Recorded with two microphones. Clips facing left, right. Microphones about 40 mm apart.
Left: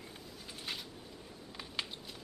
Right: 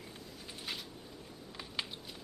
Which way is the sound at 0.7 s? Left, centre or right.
Centre.